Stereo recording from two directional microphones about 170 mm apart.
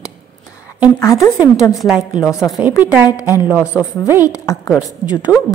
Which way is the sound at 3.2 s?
10° right (ahead or behind).